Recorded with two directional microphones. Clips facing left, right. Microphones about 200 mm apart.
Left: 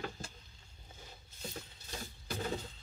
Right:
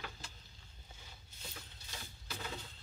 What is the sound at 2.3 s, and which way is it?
Music, 40° left (ahead or behind).